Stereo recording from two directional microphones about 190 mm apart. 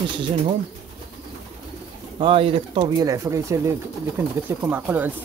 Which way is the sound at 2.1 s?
25° right (ahead or behind).